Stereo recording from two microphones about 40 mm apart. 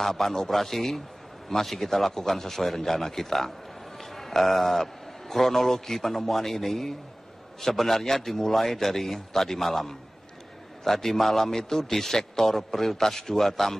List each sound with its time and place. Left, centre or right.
0.0 s a man's voice: centre
4.0 s a sound: centre
5.3 s a man's voice: centre